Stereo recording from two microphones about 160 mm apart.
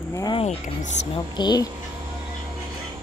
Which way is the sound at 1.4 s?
25° left (ahead or behind).